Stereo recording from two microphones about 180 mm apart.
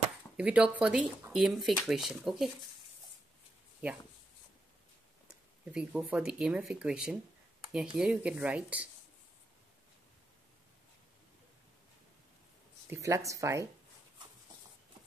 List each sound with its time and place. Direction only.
0.4 s speech: 5° right (ahead or behind)
5.3 s speech: 5° right (ahead or behind)
12.9 s speech: 15° right (ahead or behind)